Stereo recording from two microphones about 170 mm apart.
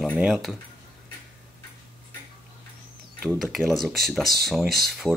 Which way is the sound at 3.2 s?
Centre (ahead or behind).